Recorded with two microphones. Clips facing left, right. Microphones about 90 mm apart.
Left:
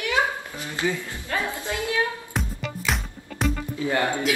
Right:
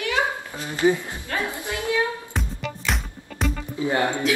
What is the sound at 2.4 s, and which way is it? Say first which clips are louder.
Music: even; centre (ahead or behind).